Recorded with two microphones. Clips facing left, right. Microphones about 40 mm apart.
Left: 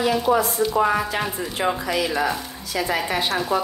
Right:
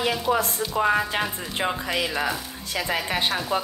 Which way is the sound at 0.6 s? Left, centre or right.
Centre.